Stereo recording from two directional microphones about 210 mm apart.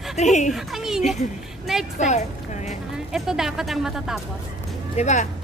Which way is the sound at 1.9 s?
35° left (ahead or behind).